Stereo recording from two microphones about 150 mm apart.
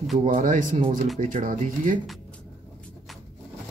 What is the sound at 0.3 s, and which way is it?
Speech, 60° right (ahead or behind).